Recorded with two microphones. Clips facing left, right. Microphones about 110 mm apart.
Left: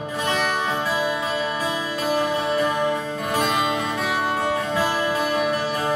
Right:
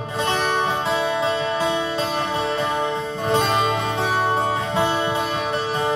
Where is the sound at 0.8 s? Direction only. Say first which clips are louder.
Right 3 dB; 25° right (ahead or behind).